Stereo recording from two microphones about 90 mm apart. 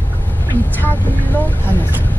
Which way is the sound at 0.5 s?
20° left (ahead or behind).